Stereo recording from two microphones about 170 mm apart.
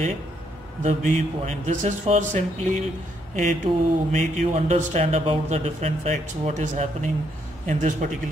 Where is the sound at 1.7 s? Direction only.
45° right (ahead or behind).